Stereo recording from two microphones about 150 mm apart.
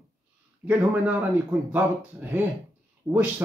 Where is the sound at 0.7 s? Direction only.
10° right (ahead or behind).